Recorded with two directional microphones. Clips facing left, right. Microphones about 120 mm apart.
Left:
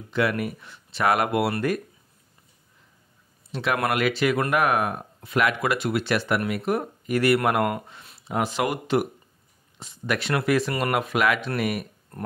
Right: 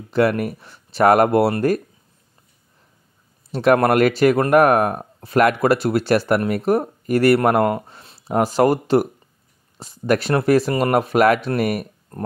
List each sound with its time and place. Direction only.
0.1 s speech: 40° right (ahead or behind)
3.5 s speech: 40° right (ahead or behind)